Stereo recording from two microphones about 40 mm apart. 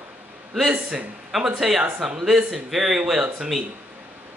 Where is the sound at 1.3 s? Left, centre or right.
Centre.